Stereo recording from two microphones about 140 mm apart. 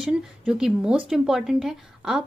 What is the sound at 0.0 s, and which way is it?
Speech, 5° right (ahead or behind).